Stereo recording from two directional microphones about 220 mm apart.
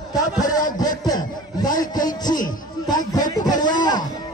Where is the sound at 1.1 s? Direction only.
20° left (ahead or behind).